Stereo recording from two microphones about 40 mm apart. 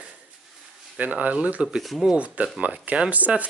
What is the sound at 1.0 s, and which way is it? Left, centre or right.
Speech, right.